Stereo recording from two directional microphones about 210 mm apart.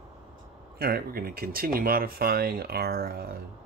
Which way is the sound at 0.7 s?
45° right (ahead or behind).